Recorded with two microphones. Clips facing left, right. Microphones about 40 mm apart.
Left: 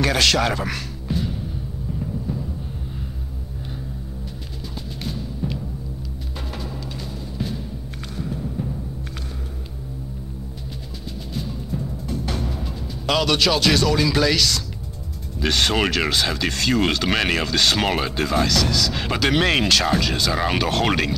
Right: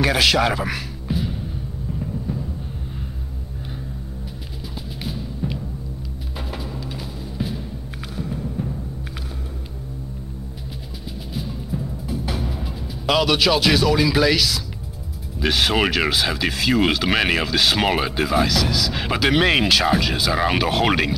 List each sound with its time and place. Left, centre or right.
0.0 s music: centre
5.0 s music: centre
7.3 s music: centre
8.6 s timpani: centre
11.3 s timpani: centre
15.3 s speech: centre